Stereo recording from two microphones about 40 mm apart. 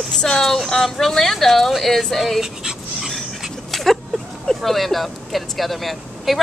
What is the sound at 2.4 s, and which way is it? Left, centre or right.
Dog, centre.